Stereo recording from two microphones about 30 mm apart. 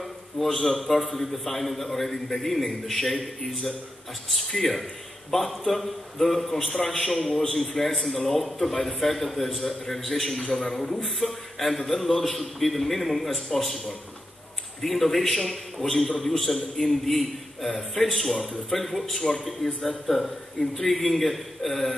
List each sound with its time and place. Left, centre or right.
0.4 s a man's voice: centre